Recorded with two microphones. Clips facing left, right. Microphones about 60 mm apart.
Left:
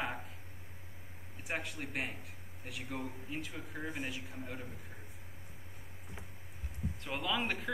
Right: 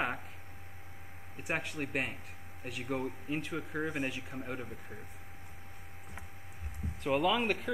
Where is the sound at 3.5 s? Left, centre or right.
Right.